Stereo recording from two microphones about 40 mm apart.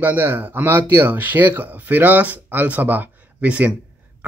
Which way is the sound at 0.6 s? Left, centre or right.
Right.